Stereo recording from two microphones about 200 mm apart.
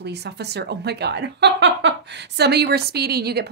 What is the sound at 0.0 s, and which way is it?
Speech, 55° right (ahead or behind).